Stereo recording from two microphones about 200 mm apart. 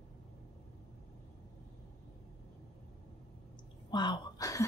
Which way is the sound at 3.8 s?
20° left (ahead or behind).